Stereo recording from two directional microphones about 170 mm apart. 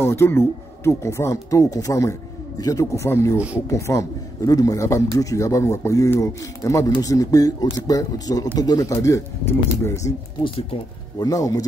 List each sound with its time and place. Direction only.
0.0 s a man's voice: 15° left (ahead or behind)
3.3 s speech: 10° right (ahead or behind)
3.6 s a man's voice: 20° left (ahead or behind)
11.1 s speech: 20° left (ahead or behind)